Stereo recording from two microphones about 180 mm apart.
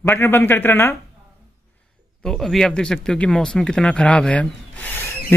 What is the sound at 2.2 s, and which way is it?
Speech, 5° left (ahead or behind).